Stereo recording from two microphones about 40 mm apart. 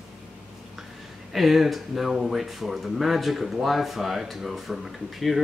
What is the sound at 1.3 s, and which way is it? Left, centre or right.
Speech, centre.